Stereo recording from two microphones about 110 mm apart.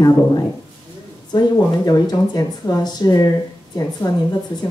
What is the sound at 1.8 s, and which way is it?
A woman's voice, 35° left (ahead or behind).